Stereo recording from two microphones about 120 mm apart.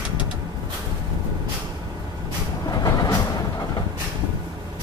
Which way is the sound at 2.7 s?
35° left (ahead or behind).